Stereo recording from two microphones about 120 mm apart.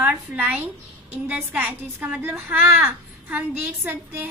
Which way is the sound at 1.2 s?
15° right (ahead or behind).